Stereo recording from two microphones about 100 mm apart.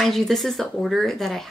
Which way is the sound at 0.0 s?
5° left (ahead or behind).